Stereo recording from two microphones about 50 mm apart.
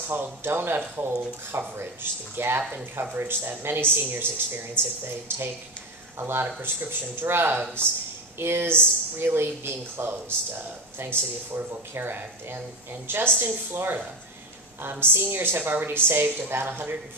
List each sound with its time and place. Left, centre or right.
0.1 s speech: right
1.5 s speech: right
2.3 s speech: right